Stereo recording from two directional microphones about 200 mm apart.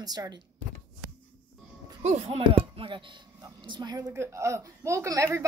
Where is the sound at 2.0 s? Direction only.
30° right (ahead or behind).